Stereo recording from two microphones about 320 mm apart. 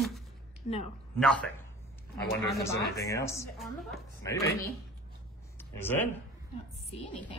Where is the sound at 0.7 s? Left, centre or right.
Left.